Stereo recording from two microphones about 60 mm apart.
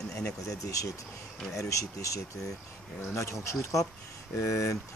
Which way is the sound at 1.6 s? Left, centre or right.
Left.